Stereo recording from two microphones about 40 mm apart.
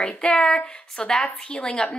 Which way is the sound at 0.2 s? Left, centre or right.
Centre.